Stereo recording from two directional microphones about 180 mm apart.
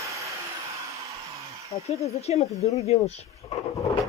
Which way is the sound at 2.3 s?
35° left (ahead or behind).